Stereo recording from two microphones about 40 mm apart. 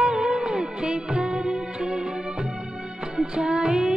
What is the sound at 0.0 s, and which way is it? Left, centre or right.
Music, centre.